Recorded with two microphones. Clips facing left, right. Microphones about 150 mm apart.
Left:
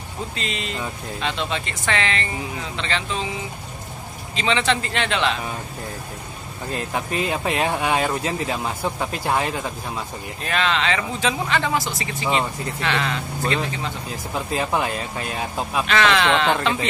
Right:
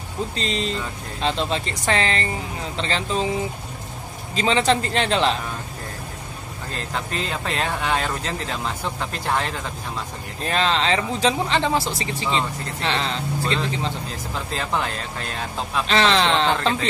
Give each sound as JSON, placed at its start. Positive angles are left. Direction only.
{"t": 0.4, "sound": "speech", "side_deg": -35}
{"t": 4.4, "sound": "speech", "side_deg": -40}
{"t": 6.7, "sound": "speech", "side_deg": 15}
{"t": 10.4, "sound": "speech", "side_deg": -35}
{"t": 14.3, "sound": "speech", "side_deg": 15}
{"t": 15.9, "sound": "speech", "side_deg": -30}